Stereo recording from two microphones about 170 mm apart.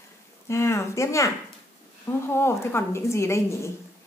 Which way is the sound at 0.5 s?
15° left (ahead or behind).